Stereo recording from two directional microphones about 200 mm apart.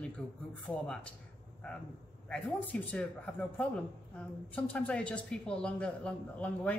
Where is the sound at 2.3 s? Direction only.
5° left (ahead or behind).